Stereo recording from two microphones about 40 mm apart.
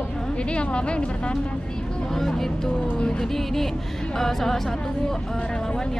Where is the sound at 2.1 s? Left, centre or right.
Centre.